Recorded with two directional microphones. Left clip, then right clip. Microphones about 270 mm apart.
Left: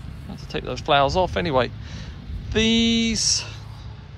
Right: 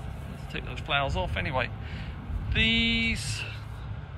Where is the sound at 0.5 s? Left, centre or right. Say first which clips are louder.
Left 10 dB; centre.